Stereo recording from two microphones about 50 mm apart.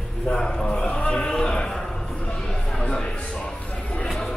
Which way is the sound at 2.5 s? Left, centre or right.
Centre.